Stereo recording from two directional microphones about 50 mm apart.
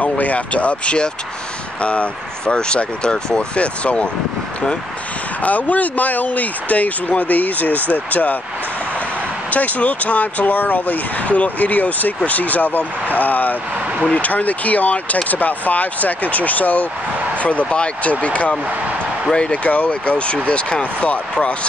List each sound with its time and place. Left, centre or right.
0.0 s speech: left
5.4 s speech: left
9.5 s speech: left